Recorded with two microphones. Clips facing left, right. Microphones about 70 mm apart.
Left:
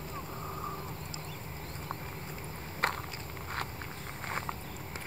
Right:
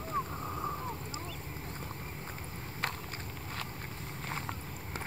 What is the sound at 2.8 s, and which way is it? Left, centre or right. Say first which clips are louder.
Walk: left 5 dB; left.